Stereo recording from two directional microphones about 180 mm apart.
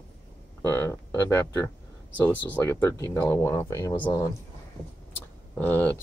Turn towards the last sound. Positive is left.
turn(degrees=10)  # may be behind; listen again after turning